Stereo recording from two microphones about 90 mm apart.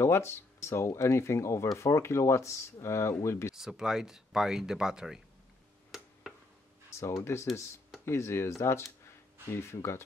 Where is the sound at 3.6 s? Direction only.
5° right (ahead or behind).